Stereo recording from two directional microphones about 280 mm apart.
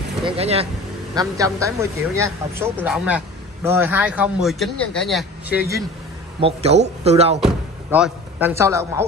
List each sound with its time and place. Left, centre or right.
0.2 s a man's voice: centre
6.4 s a man's voice: right
7.3 s speech: centre